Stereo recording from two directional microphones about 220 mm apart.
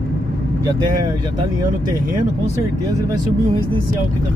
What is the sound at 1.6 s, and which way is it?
Speech, 15° right (ahead or behind).